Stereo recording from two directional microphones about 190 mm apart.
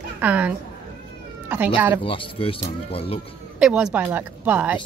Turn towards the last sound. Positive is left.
turn(degrees=-10)  # may be behind; listen again after turning